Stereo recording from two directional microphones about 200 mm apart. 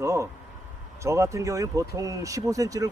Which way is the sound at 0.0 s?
15° right (ahead or behind).